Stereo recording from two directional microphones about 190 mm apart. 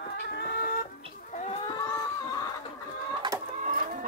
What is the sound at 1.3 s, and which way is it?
Chicken, 35° left (ahead or behind).